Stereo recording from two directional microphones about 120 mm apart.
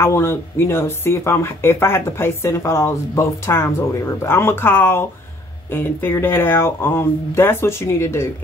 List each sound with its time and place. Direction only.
0.0 s speech: 20° left (ahead or behind)